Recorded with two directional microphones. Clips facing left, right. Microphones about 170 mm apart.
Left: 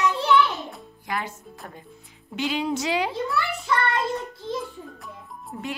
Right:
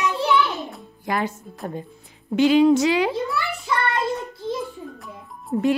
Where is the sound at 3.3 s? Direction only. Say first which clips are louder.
Even; centre (ahead or behind).